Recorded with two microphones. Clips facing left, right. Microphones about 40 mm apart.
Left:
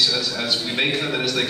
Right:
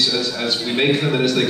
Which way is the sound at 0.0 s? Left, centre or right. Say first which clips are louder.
Right 2 dB; centre.